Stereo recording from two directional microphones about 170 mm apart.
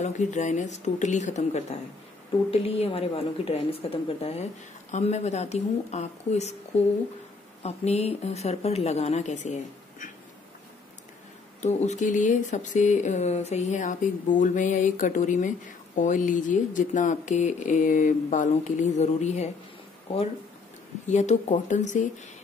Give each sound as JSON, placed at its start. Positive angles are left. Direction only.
{"t": 0.0, "sound": "speech", "side_deg": 45}
{"t": 7.6, "sound": "speech", "side_deg": 40}
{"t": 11.6, "sound": "speech", "side_deg": 45}
{"t": 21.1, "sound": "speech", "side_deg": 45}